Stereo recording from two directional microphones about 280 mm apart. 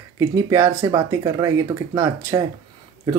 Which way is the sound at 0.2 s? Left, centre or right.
Centre.